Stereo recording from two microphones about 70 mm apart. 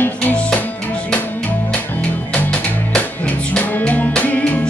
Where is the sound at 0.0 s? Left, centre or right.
Left.